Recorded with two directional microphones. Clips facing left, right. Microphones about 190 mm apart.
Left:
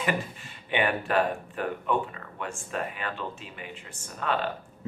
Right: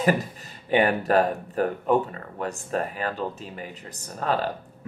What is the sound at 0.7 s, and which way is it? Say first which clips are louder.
Speech: right 6 dB; 40° right (ahead or behind).